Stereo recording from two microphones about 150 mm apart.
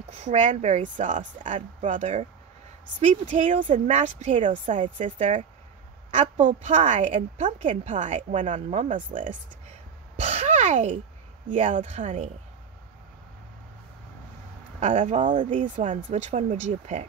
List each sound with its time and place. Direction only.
0.2 s speech: 55° right (ahead or behind)
9.1 s speech: 60° right (ahead or behind)
10.1 s a sound: 50° right (ahead or behind)
11.4 s speech: 55° right (ahead or behind)
14.8 s speech: 50° right (ahead or behind)